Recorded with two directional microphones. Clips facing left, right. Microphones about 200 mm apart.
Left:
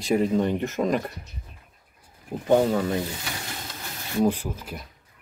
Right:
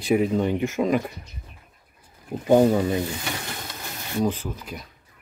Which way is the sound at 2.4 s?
15° right (ahead or behind).